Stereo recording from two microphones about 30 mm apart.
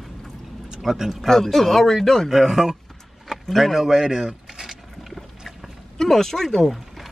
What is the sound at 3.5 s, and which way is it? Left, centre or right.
Speech, centre.